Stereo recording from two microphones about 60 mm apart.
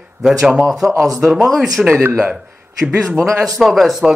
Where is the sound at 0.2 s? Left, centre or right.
Centre.